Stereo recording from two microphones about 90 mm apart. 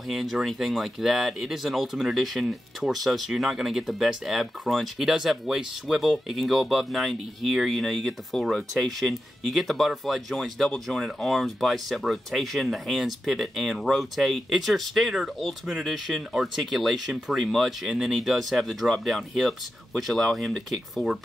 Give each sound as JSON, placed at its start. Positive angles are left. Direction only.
{"t": 0.1, "sound": "speech", "side_deg": -5}